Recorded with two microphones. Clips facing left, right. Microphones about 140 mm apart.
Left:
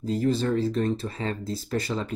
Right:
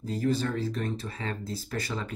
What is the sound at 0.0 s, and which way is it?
Speech, 25° left (ahead or behind).